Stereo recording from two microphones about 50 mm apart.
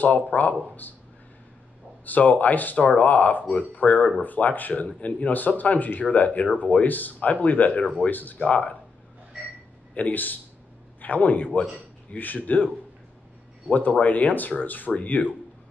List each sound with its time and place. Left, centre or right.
0.0 s speech: left
2.0 s speech: left
9.9 s speech: left
13.7 s speech: left